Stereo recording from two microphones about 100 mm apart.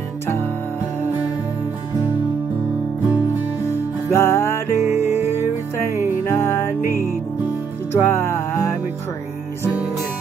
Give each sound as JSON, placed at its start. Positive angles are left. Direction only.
{"t": 4.1, "sound": "music", "side_deg": 25}
{"t": 6.2, "sound": "music", "side_deg": 25}
{"t": 7.9, "sound": "music", "side_deg": 25}